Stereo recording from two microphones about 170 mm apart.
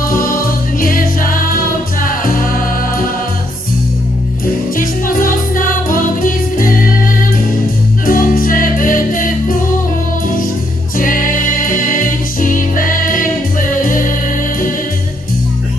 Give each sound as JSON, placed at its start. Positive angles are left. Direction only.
{"t": 0.1, "sound": "music", "side_deg": 55}
{"t": 4.7, "sound": "music", "side_deg": 55}
{"t": 8.1, "sound": "music", "side_deg": 55}
{"t": 11.0, "sound": "music", "side_deg": 55}